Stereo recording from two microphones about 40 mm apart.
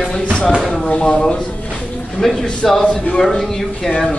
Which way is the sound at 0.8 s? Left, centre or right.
Left.